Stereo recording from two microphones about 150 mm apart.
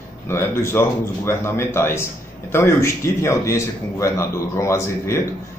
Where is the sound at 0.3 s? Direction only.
15° left (ahead or behind).